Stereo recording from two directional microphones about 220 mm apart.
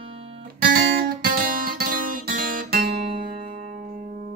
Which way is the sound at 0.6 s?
40° right (ahead or behind).